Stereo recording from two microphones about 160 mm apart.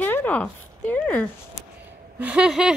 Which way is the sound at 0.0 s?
10° left (ahead or behind).